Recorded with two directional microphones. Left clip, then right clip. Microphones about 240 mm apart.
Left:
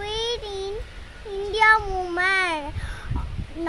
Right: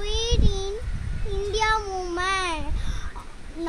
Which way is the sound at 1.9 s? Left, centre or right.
Centre.